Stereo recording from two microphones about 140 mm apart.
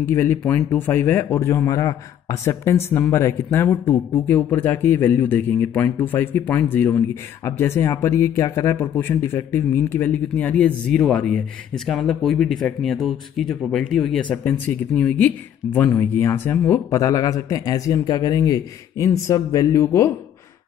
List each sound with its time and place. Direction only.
0.1 s speech: 15° left (ahead or behind)